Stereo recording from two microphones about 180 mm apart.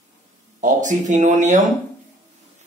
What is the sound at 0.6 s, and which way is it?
Speech, 45° right (ahead or behind).